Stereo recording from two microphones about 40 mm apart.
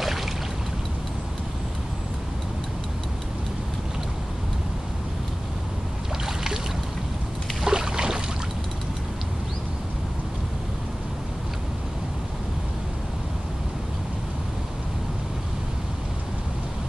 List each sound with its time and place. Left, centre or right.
0.0 s boat: centre
6.2 s boat: centre
7.6 s boat: centre